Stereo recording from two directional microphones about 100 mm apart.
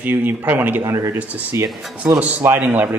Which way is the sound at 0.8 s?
30° right (ahead or behind).